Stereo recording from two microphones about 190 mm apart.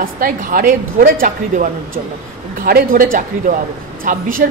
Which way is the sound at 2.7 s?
50° right (ahead or behind).